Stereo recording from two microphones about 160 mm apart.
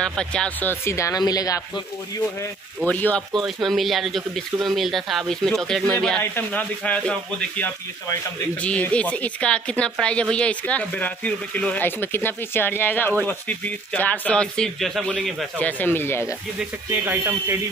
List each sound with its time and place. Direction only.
0.0 s speech: 5° left (ahead or behind); by 1.6 s 25° left (ahead or behind)
2.9 s speech: 10° left (ahead or behind)
16.5 s speech: 10° right (ahead or behind)